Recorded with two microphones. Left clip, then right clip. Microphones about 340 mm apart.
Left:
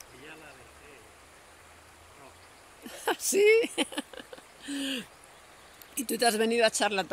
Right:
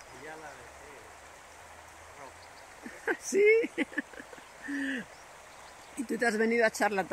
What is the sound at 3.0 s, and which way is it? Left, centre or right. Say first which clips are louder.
Speech: left 2 dB; centre.